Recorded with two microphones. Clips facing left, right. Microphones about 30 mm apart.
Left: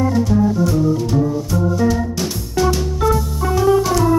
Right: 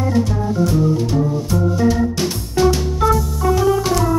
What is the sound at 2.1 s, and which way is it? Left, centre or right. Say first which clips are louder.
Music: right 1 dB; centre.